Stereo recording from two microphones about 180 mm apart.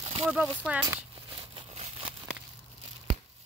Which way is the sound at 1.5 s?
35° right (ahead or behind).